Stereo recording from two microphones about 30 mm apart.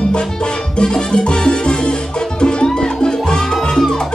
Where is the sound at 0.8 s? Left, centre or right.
Left.